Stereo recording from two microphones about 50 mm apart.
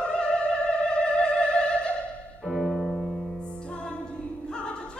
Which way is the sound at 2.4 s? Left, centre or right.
Centre.